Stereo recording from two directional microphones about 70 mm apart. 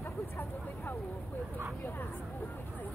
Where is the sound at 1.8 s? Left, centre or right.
Left.